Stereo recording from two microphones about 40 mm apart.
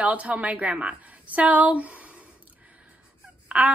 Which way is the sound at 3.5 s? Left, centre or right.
Right.